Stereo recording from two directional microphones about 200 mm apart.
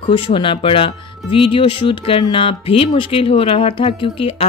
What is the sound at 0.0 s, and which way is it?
Speech, 25° left (ahead or behind).